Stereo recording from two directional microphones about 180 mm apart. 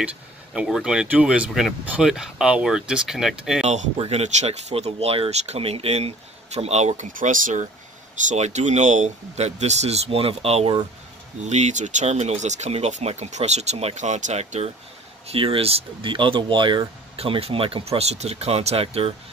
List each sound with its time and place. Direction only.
0.0 s speech: 5° right (ahead or behind)
3.6 s speech: 35° right (ahead or behind)